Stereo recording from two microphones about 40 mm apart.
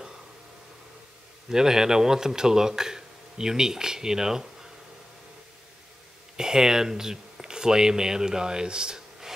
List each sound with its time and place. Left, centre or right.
1.5 s speech: centre
6.3 s speech: centre